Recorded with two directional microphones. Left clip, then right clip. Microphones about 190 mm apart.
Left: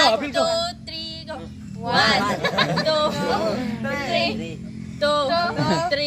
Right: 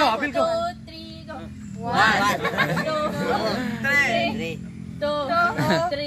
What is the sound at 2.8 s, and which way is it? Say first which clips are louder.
Music: left 4 dB; 25° left (ahead or behind).